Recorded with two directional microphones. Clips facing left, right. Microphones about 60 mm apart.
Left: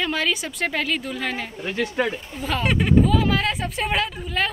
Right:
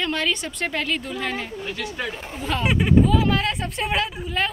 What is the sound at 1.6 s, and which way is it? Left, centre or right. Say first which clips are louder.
Speech: left 5 dB; left.